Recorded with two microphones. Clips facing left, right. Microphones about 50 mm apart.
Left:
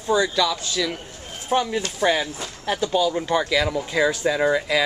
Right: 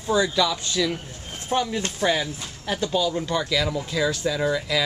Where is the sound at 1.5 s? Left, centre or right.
Centre.